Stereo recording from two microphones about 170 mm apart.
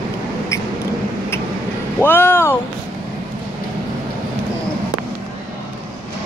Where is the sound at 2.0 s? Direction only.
15° left (ahead or behind).